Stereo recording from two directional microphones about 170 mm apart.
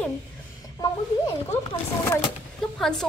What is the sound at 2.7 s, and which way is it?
Speech, 5° left (ahead or behind).